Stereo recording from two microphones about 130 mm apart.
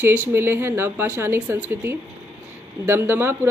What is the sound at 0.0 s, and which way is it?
Speech, 15° right (ahead or behind).